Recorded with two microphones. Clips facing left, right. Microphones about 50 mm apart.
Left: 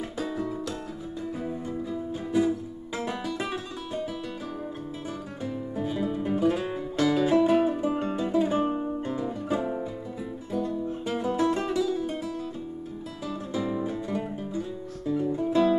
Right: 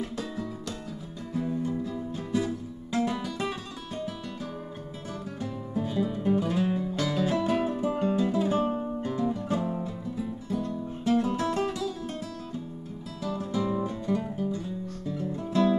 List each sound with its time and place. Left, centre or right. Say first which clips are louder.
0.2 s music: left 4 dB; centre
5.4 s music: left 1 dB; centre
13.2 s music: right 1 dB; centre
14.2 s music: right 2 dB; centre
15.0 s guitar: left 8 dB; centre